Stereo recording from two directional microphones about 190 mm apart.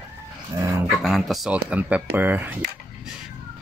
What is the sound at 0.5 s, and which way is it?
Speech, 15° right (ahead or behind).